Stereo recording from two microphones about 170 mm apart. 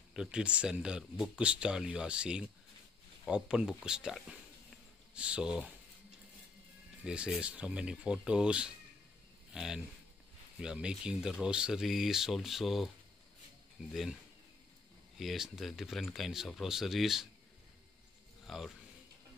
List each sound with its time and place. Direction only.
0.1 s speech: 5° right (ahead or behind)
7.1 s speech: 5° right (ahead or behind)
15.1 s speech: centre (ahead or behind)
18.5 s speech: centre (ahead or behind)